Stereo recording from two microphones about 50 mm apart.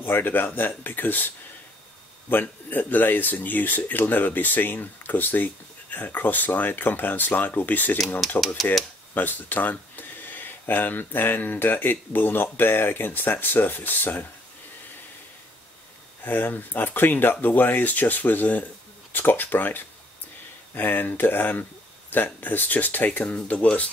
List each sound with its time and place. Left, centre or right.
0.0 s speech: left
9.1 s speech: left
16.3 s speech: left